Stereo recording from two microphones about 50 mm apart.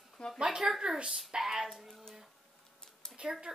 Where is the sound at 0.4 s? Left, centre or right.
Centre.